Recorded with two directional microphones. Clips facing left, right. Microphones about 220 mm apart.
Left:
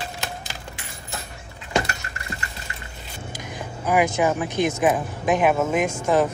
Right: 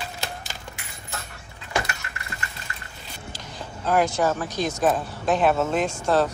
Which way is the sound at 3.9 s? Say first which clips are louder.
Left 1 dB; 15° left (ahead or behind).